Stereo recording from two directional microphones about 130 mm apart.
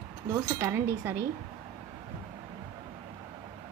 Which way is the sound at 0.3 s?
20° right (ahead or behind).